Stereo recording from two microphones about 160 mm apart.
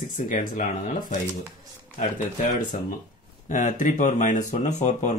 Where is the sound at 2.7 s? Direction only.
50° left (ahead or behind).